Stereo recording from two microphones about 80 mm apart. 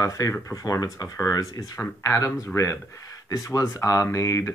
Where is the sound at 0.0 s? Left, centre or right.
Left.